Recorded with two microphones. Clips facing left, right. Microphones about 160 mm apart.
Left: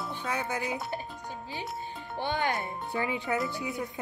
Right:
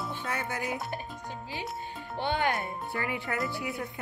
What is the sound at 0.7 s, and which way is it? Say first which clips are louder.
Music: left 1 dB; centre (ahead or behind).